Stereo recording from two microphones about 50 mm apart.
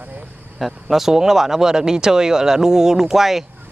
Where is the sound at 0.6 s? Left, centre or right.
Centre.